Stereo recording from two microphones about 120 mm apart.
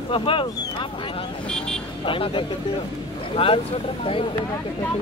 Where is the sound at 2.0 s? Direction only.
45° left (ahead or behind).